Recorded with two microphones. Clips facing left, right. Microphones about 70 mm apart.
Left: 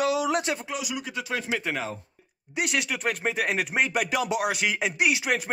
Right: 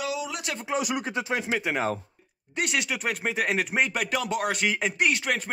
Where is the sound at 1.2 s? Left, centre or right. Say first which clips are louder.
Even; right.